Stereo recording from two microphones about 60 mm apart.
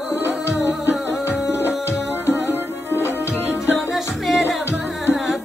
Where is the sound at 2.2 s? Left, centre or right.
Left.